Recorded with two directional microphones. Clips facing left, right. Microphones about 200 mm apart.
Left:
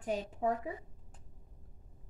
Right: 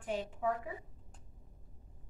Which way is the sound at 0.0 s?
40° left (ahead or behind).